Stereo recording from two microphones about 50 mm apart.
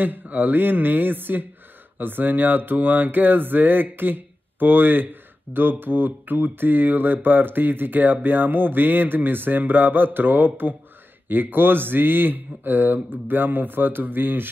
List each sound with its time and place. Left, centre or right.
0.0 s mantra: right